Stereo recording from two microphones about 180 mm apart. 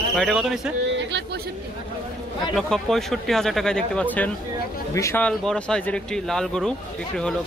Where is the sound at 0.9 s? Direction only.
70° right (ahead or behind).